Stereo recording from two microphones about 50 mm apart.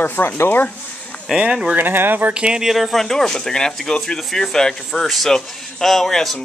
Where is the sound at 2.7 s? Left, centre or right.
Centre.